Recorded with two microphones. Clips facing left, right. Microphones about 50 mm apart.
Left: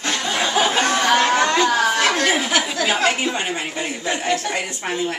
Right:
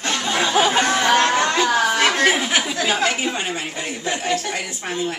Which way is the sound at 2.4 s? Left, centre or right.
Centre.